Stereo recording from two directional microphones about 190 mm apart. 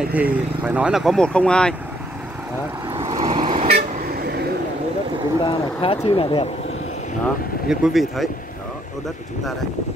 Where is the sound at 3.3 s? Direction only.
30° right (ahead or behind).